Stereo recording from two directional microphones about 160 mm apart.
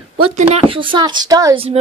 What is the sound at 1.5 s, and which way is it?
Speech, 35° right (ahead or behind).